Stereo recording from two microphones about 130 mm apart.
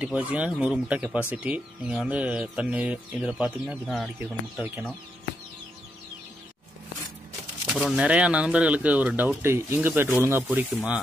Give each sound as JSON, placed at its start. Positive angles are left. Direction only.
{"t": 0.0, "sound": "speech", "side_deg": -10}
{"t": 3.8, "sound": "speech", "side_deg": 5}
{"t": 4.2, "sound": "speech", "side_deg": -10}
{"t": 7.6, "sound": "speech", "side_deg": -5}